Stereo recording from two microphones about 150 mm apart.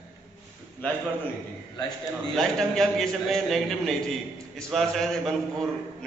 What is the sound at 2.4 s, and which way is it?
A man's voice, centre (ahead or behind).